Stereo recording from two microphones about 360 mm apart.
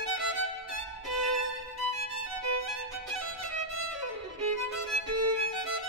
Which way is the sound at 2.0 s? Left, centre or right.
Right.